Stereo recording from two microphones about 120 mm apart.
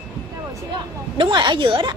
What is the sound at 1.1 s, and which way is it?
Speech, 40° right (ahead or behind).